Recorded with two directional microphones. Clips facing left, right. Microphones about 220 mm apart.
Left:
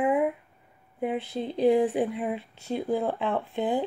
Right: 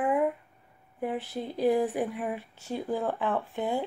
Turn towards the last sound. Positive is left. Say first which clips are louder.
# left 3 dB
turn(degrees=20)  # may be behind; listen again after turning